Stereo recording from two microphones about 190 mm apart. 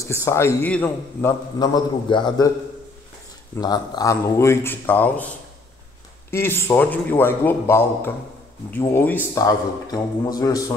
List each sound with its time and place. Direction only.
0.0 s a man's voice: 15° left (ahead or behind)
1.6 s a man's voice: 25° left (ahead or behind)
3.5 s a man's voice: 20° left (ahead or behind)
6.3 s a man's voice: 10° left (ahead or behind)